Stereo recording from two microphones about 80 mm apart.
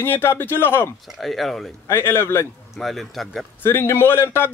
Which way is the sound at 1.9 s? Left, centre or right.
Left.